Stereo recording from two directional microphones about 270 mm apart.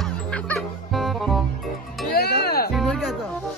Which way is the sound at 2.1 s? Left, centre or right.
Left.